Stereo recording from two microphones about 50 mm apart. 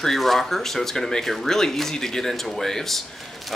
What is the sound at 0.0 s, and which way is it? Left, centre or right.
Speech, centre.